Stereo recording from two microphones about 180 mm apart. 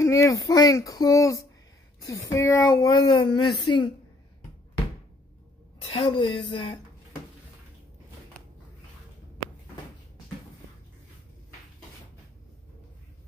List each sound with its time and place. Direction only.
0.0 s a sound: 15° left (ahead or behind)
0.5 s speech: 20° left (ahead or behind)
5.9 s speech: 30° left (ahead or behind)